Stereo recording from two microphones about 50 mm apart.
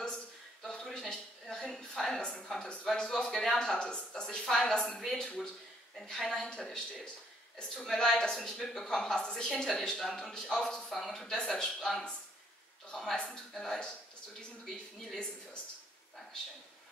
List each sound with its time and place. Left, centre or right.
0.0 s a sound: centre
2.4 s speech: centre
7.7 s speech: centre
13.0 s speech: centre
14.6 s a woman's voice: centre